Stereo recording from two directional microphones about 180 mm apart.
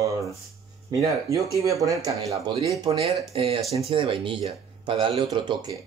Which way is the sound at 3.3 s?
30° right (ahead or behind).